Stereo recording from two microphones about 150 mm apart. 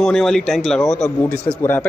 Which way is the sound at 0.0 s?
5° left (ahead or behind).